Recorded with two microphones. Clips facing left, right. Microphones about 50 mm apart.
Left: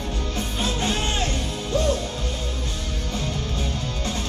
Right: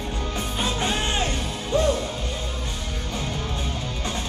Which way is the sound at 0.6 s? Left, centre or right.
Centre.